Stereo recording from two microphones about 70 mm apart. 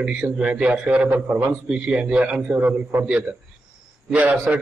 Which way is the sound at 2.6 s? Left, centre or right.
Right.